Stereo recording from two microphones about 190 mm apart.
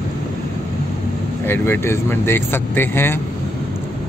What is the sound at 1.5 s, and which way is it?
Speech, 10° left (ahead or behind).